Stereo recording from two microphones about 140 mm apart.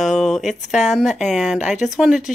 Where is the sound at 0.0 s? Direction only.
Centre (ahead or behind).